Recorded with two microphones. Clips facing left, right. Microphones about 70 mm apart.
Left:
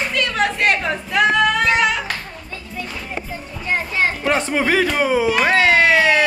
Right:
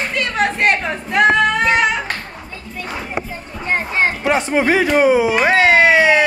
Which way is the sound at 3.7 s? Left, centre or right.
Right.